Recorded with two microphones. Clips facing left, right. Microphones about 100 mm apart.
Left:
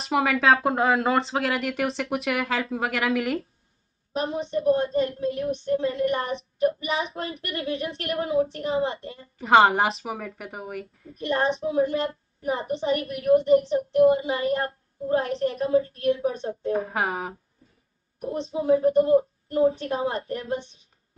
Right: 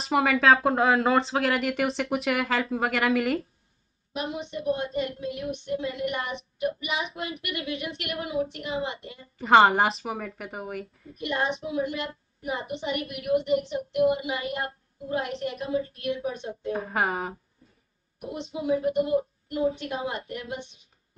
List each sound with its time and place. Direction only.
0.0 s speech: centre (ahead or behind)
4.1 s a woman's voice: 35° left (ahead or behind)
9.4 s speech: centre (ahead or behind)
11.1 s a woman's voice: 35° left (ahead or behind)
16.7 s speech: centre (ahead or behind)
18.2 s a woman's voice: 35° left (ahead or behind)